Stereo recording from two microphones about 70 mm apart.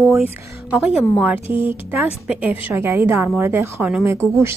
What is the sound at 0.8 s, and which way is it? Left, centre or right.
Speech, centre.